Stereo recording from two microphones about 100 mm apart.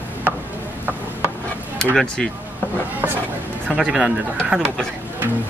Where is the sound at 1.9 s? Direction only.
5° left (ahead or behind).